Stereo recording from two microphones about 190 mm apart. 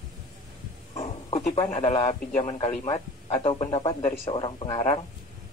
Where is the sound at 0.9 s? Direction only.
35° left (ahead or behind).